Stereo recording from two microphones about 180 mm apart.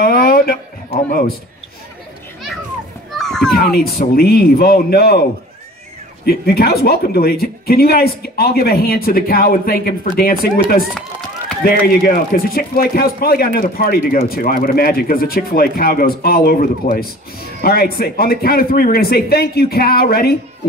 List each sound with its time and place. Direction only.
0.0 s a sound: 55° left (ahead or behind)
0.9 s speech: 55° left (ahead or behind)
3.1 s children playing: centre (ahead or behind)
3.5 s speech: 60° left (ahead or behind)
6.2 s speech: 60° left (ahead or behind)
11.0 s run: 5° left (ahead or behind)
11.6 s speech: 55° left (ahead or behind)